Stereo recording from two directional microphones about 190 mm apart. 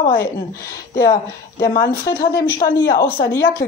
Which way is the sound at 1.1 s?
60° left (ahead or behind).